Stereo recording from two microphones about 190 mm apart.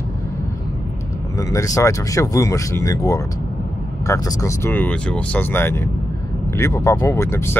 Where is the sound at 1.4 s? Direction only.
15° left (ahead or behind).